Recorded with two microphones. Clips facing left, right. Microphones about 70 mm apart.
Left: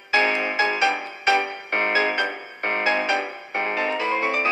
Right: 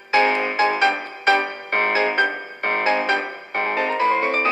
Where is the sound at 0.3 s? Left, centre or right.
Right.